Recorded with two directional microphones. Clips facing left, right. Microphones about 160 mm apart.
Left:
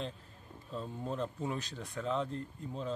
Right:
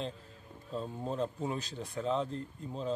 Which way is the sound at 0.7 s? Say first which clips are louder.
Right 3 dB; 30° right (ahead or behind).